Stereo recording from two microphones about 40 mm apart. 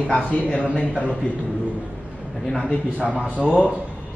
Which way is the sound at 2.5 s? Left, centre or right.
Centre.